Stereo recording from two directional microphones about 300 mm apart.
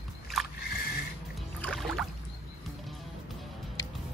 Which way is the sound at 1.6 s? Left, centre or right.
Centre.